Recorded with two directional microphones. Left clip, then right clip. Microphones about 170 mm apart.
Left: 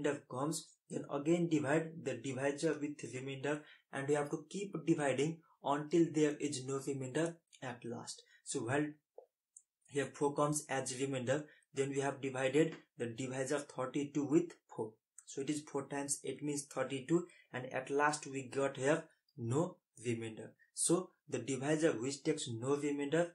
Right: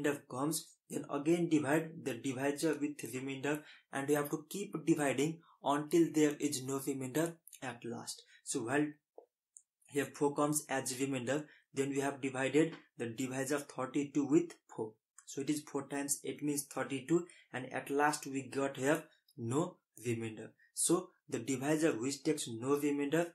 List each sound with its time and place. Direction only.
0.0 s speech: 35° right (ahead or behind)
9.9 s speech: 35° right (ahead or behind)